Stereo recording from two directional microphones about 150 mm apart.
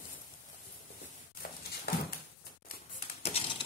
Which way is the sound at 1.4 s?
70° left (ahead or behind).